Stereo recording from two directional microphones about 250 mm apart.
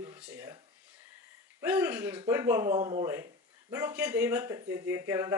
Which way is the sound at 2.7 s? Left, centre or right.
Right.